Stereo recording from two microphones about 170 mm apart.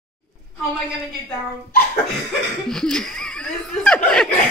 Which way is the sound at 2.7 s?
5° left (ahead or behind).